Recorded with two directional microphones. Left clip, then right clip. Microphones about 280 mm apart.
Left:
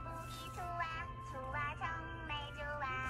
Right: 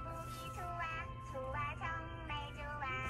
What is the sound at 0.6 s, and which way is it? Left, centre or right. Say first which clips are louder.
Music: left 2 dB; left.